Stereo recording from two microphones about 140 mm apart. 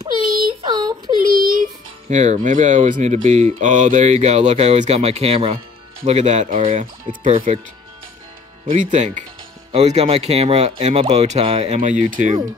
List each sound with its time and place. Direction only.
0.7 s a sound: 30° right (ahead or behind)
1.2 s child singing: 90° right
2.0 s speech: 60° right (ahead or behind)
8.7 s speech: 60° right (ahead or behind)
9.7 s speech: 50° right (ahead or behind)